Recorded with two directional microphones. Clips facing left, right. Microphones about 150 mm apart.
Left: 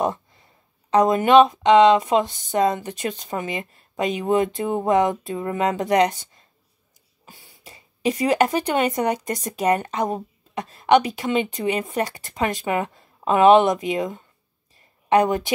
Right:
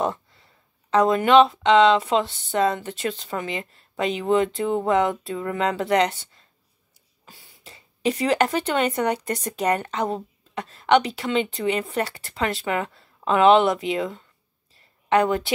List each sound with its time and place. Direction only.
0.0 s speech: 15° left (ahead or behind)